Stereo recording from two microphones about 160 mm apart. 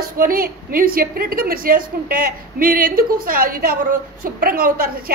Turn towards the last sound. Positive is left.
turn(degrees=-65)  # may be behind; listen again after turning